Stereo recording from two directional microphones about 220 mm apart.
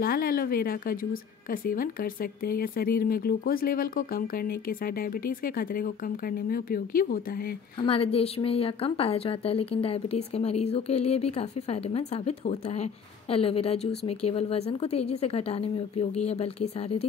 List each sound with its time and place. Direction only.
0.0 s speech: 40° left (ahead or behind)
7.8 s a woman's voice: 25° left (ahead or behind)